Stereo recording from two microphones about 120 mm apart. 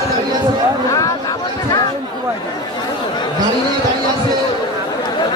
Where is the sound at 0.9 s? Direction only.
25° left (ahead or behind).